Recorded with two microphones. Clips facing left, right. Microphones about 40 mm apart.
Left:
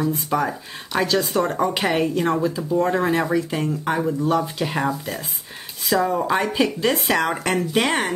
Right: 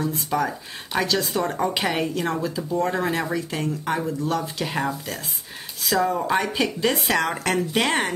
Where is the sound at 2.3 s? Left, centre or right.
Left.